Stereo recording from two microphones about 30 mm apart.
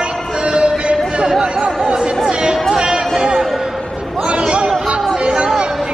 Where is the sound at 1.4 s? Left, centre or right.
Right.